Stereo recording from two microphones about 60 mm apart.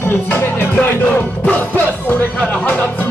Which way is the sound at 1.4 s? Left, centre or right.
Left.